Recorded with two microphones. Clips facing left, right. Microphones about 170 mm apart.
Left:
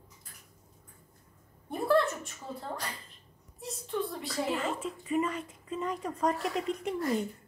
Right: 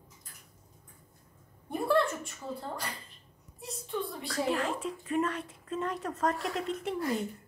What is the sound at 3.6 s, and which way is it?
A woman's voice, centre (ahead or behind).